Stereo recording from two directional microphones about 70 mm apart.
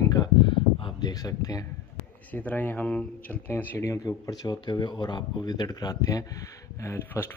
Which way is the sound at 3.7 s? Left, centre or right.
Left.